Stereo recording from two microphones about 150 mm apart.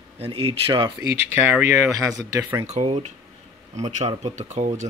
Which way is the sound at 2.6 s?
50° right (ahead or behind).